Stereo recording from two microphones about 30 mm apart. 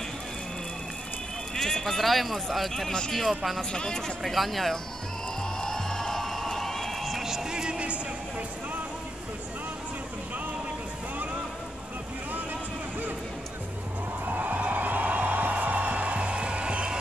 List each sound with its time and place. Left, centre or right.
1.5 s run: centre
2.0 s a man's voice: centre
3.7 s speech: left
4.2 s a man's voice: centre
5.4 s music: left
6.2 s a sound: centre
7.2 s music: centre
7.7 s music: right
14.2 s music: right